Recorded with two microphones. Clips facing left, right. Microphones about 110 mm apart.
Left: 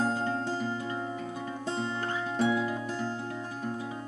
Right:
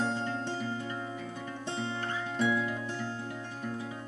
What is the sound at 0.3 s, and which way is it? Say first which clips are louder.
Music: left 3 dB; 40° left (ahead or behind).